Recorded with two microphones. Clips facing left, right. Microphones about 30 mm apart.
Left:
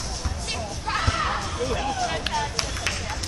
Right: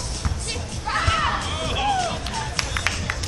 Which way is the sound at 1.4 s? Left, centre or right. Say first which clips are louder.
Right 2 dB; right.